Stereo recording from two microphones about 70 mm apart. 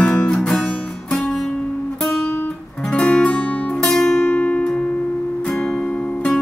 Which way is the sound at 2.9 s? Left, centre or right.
Centre.